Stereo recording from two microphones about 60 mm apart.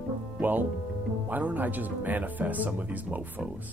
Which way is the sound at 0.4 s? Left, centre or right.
Right.